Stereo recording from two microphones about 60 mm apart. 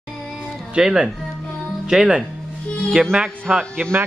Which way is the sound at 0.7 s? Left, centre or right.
Centre.